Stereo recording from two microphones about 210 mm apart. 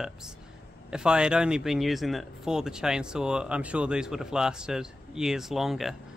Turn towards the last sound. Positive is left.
turn(degrees=0)  # may be behind; listen again after turning